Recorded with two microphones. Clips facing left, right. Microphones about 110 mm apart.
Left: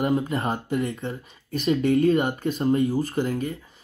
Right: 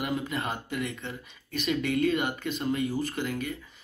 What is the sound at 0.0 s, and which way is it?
Speech, 30° left (ahead or behind).